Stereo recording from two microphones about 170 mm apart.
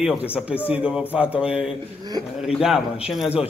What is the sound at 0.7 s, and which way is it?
A man's voice, 5° right (ahead or behind).